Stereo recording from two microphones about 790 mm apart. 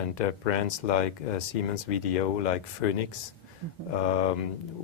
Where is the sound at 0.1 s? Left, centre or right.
Left.